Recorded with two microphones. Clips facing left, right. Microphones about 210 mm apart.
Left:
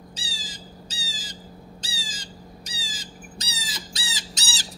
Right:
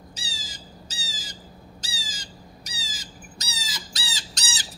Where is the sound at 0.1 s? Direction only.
30° left (ahead or behind).